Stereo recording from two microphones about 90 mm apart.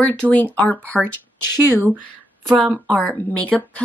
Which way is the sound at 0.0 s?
15° left (ahead or behind).